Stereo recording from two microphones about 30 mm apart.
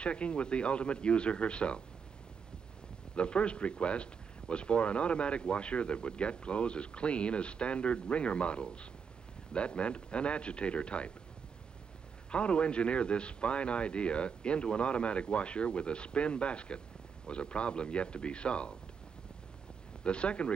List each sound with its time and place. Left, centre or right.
0.0 s speech: left
3.2 s speech: left
12.3 s speech: left
20.0 s speech: left